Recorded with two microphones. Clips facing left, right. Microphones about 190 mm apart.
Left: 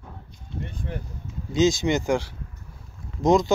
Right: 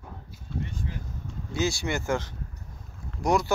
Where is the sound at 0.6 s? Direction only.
60° left (ahead or behind).